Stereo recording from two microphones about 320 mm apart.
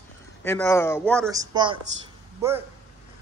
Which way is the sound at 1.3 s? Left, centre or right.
Centre.